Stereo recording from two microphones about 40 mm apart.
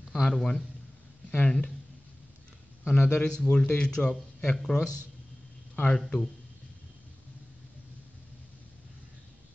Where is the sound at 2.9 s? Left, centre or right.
Left.